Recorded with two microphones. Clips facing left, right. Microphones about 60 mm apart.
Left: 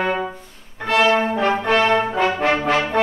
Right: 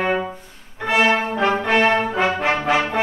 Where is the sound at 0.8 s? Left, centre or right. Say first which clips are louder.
Left 1 dB; centre.